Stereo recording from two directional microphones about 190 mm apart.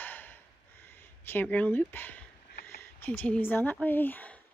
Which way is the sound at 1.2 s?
10° left (ahead or behind).